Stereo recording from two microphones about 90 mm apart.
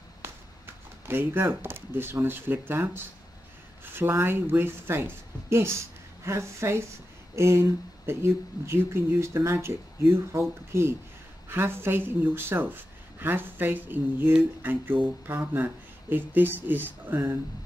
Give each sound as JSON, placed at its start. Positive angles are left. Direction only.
{"t": 1.0, "sound": "speech", "side_deg": -25}